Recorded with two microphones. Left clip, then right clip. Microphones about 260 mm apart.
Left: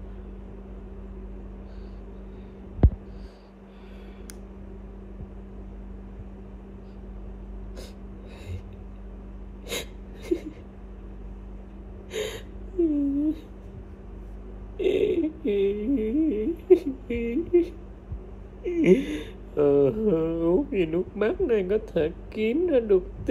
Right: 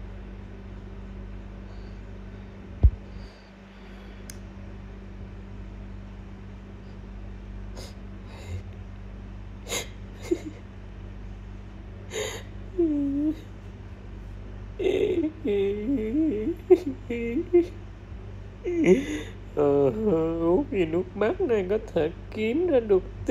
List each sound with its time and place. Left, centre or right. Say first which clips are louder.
9.7 s wheeze: right 1 dB; centre
12.1 s gasp: left 1 dB; centre
14.8 s humming: left 1 dB; centre
18.6 s a sound: left 1 dB; centre